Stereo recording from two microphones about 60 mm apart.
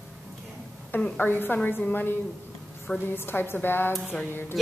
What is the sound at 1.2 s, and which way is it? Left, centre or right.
A woman's voice, left.